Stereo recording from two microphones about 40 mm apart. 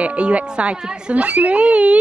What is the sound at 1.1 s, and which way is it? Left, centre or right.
Speech, right.